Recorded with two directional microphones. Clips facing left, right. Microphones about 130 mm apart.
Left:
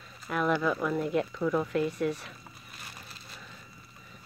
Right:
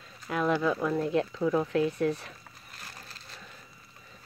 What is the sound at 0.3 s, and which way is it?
Speech, 25° right (ahead or behind).